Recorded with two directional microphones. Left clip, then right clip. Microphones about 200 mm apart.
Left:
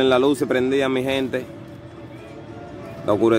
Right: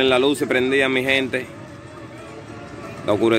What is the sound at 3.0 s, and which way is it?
Speech, 10° left (ahead or behind).